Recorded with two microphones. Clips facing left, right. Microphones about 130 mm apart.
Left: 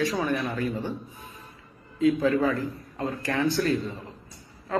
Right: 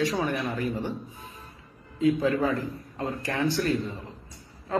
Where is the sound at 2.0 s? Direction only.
25° right (ahead or behind).